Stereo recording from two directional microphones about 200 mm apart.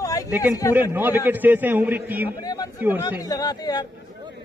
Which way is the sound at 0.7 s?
10° right (ahead or behind).